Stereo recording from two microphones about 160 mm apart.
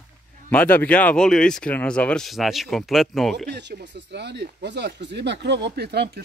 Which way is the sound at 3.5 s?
90° right.